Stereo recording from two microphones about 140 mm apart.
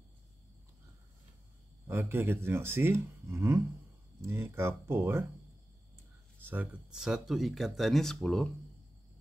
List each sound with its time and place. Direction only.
1.9 s speech: 15° right (ahead or behind)
6.4 s speech: 10° right (ahead or behind); by 8.5 s 5° left (ahead or behind)